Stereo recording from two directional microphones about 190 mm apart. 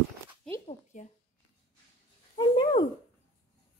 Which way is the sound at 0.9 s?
40° left (ahead or behind).